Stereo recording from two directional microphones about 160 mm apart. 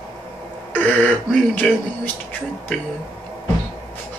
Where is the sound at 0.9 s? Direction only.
10° left (ahead or behind).